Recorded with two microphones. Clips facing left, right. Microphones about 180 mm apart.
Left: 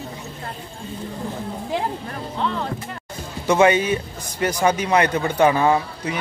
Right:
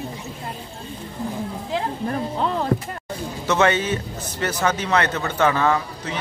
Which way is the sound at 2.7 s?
70° right (ahead or behind).